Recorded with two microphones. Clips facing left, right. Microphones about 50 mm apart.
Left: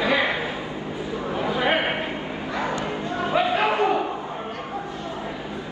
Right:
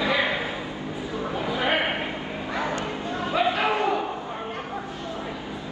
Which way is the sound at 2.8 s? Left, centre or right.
Left.